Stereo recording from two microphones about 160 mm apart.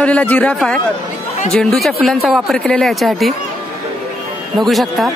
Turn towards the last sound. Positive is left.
turn(degrees=0)  # may be behind; listen again after turning